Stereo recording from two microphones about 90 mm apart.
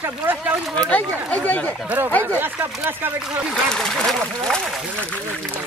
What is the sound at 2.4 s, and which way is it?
Speech, 20° right (ahead or behind).